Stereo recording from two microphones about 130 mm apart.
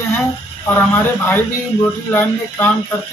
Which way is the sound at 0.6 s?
15° left (ahead or behind).